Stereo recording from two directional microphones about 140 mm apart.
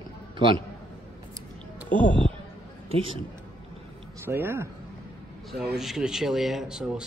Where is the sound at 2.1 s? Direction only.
10° left (ahead or behind).